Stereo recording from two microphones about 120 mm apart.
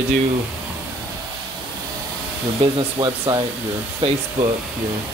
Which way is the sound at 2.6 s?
45° right (ahead or behind).